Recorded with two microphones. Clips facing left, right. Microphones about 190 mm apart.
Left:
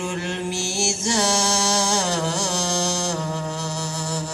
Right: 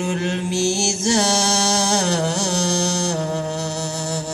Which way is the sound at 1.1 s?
45° right (ahead or behind).